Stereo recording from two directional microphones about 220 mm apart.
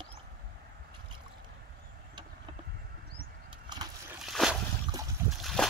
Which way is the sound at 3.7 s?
20° right (ahead or behind).